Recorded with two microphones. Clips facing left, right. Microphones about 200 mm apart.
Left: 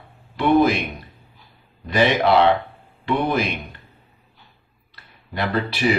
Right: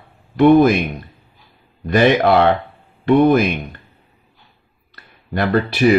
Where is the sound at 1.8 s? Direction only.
50° right (ahead or behind).